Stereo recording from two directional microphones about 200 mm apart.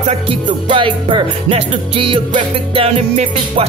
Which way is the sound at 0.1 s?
30° right (ahead or behind).